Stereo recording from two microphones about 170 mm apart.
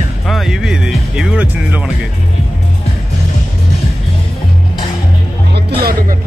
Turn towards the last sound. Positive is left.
turn(degrees=-65)  # may be behind; listen again after turning